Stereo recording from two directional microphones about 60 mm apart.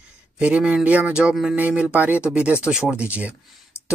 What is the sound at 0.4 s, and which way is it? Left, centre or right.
Speech, right.